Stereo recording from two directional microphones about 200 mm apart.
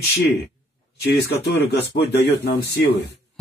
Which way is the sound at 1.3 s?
55° left (ahead or behind).